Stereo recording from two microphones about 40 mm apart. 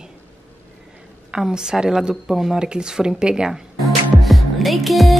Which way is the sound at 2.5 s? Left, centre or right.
Right.